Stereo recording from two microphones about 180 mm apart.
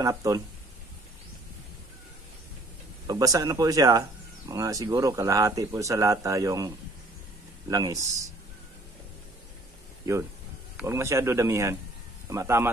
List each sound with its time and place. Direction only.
0.0 s speech: 20° right (ahead or behind)
3.1 s speech: 20° right (ahead or behind)
7.7 s speech: 20° right (ahead or behind)
10.8 s a man's voice: 15° right (ahead or behind)